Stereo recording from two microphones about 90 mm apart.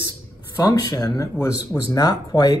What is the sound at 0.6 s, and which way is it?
Speech, 45° left (ahead or behind).